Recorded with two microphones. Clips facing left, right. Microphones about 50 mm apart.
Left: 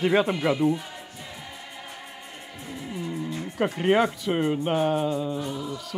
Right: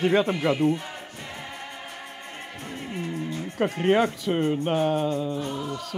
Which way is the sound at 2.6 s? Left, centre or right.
Right.